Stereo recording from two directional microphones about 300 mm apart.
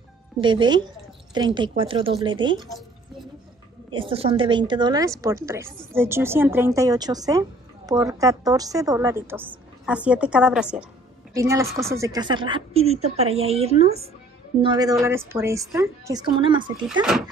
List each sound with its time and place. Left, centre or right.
0.4 s speech: centre
3.9 s speech: centre